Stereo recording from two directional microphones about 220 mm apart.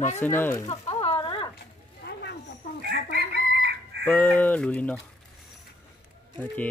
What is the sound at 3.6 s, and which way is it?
Chicken, 50° right (ahead or behind).